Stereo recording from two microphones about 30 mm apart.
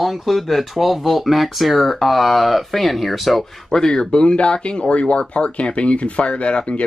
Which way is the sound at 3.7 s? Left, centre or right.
Left.